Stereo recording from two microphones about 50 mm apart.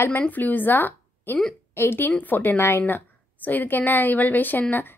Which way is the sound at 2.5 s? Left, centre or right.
Left.